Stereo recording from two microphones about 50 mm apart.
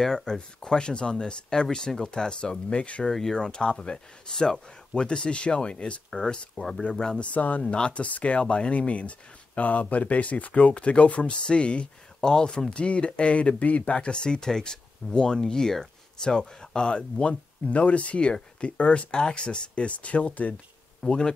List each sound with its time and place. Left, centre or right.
0.0 s speech: centre
3.1 s speech: centre; by 7.6 s left
7.6 s speech: centre
21.0 s speech: centre